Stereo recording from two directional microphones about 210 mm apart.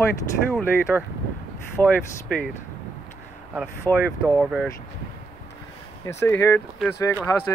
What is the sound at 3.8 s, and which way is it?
Speech, 10° left (ahead or behind).